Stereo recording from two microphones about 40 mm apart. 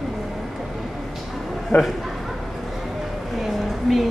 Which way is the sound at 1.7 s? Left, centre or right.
Left.